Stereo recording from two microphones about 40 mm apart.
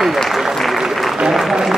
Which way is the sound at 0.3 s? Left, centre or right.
Centre.